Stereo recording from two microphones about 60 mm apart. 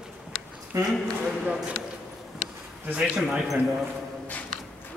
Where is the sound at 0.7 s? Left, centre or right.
Right.